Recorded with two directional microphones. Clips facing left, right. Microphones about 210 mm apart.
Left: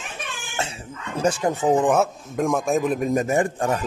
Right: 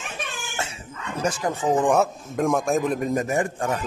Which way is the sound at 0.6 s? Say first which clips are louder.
Left 5 dB; 30° left (ahead or behind).